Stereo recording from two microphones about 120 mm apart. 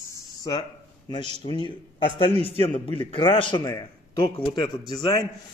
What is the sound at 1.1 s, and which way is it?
A man's voice, 40° left (ahead or behind).